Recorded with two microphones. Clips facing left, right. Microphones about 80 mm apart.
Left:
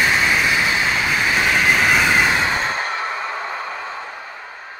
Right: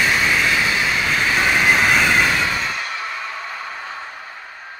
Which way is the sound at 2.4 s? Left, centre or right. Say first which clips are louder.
Left 2 dB; left.